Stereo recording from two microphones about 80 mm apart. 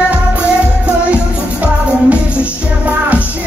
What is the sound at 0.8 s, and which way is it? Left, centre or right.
Music, centre.